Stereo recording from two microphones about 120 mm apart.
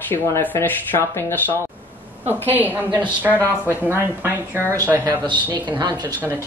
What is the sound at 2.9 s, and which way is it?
Speech, 40° right (ahead or behind).